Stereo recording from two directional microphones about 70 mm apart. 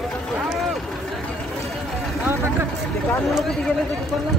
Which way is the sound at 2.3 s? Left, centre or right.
Right.